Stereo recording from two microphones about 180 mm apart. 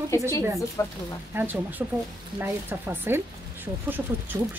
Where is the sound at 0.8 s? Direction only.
20° left (ahead or behind).